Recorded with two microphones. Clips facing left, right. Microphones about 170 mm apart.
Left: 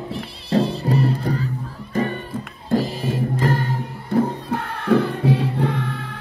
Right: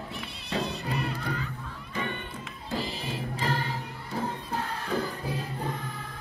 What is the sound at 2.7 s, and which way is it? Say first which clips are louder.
Music: left 12 dB; 50° left (ahead or behind).